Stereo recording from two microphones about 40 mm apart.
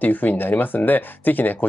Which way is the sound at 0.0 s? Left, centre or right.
Left.